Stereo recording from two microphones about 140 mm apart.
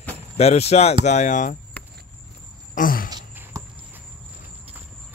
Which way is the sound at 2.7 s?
85° left.